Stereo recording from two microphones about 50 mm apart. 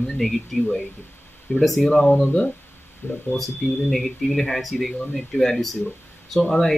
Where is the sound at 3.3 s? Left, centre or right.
Centre.